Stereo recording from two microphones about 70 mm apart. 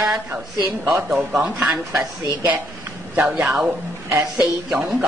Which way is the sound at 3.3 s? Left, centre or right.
Centre.